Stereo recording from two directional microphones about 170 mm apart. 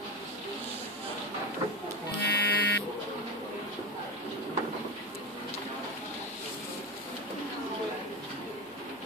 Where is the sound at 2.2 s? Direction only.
85° left.